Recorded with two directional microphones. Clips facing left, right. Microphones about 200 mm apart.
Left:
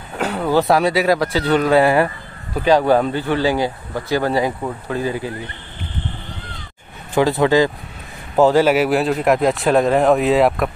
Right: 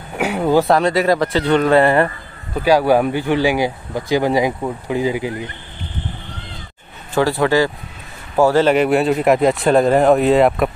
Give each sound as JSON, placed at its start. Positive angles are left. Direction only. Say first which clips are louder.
{"t": 0.2, "sound": "speech", "louder": "right 2 dB", "side_deg": -15}
{"t": 0.7, "sound": "speech", "louder": "right 1 dB", "side_deg": 5}
{"t": 2.5, "sound": "speech", "louder": "right 1 dB", "side_deg": -10}
{"t": 7.2, "sound": "speech", "louder": "left 1 dB", "side_deg": 20}